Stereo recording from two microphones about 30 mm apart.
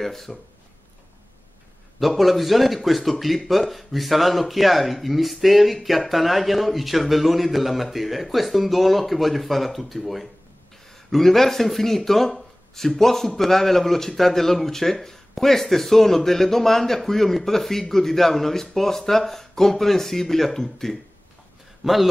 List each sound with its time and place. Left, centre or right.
0.0 s a man's voice: centre
2.0 s a man's voice: centre
21.8 s a man's voice: right